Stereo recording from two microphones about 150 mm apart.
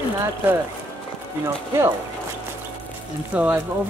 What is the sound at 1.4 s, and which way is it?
Speech, 20° right (ahead or behind).